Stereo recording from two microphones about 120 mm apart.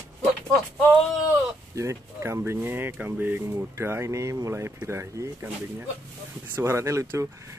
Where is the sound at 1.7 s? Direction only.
25° right (ahead or behind).